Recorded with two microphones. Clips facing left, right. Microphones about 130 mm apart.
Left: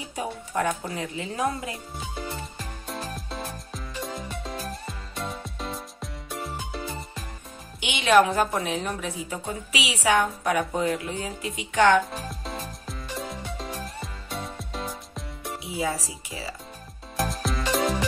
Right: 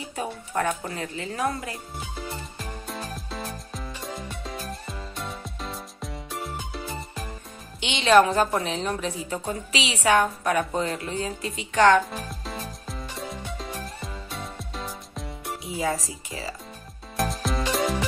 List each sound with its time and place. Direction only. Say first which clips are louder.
0.1 s a woman's voice: even; 10° left (ahead or behind)
2.9 s music: left 2 dB; centre (ahead or behind)
7.8 s a woman's voice: right 1 dB; 10° left (ahead or behind)
12.1 s music: even; centre (ahead or behind)
15.6 s speech: right 1 dB; 10° left (ahead or behind)
17.2 s music: right 1 dB; centre (ahead or behind)